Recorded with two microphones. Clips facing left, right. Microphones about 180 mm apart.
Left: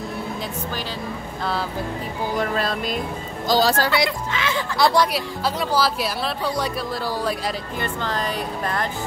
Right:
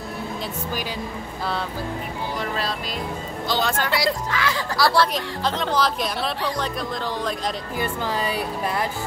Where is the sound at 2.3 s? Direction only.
50° left (ahead or behind).